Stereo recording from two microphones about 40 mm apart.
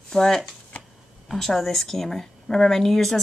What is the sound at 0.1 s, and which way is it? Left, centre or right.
Speech, centre.